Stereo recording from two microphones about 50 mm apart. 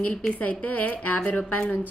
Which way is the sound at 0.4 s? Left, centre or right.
Left.